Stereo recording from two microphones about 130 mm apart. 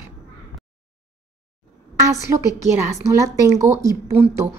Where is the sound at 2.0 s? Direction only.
25° right (ahead or behind).